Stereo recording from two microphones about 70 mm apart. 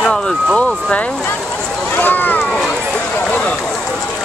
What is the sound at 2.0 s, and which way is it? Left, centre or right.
Speech, left.